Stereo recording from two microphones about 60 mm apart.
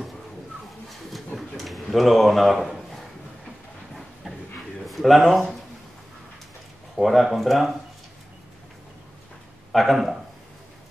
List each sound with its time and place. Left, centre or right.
0.8 s a sound: centre
4.8 s speech: centre
7.0 s speech: centre
9.7 s speech: centre